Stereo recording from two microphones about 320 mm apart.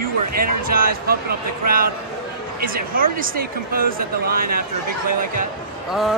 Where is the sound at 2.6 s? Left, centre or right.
Right.